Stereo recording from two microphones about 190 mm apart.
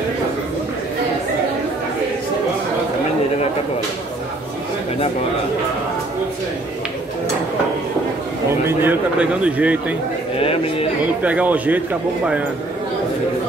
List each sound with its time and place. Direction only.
8.6 s speech: 10° right (ahead or behind)
10.4 s speech: 30° left (ahead or behind)
11.2 s speech: 5° right (ahead or behind)